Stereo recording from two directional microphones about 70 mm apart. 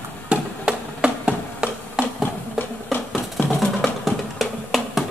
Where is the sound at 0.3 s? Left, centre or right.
Centre.